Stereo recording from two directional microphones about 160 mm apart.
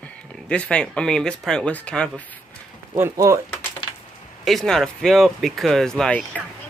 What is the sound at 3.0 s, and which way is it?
Speech, 20° right (ahead or behind).